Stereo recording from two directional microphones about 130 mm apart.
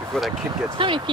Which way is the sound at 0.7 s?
40° right (ahead or behind).